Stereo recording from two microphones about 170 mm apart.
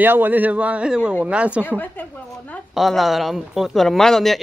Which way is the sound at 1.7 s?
10° left (ahead or behind).